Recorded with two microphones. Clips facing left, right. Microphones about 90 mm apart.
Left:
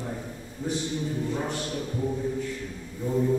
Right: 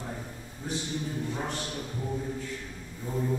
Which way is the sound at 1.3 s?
Centre (ahead or behind).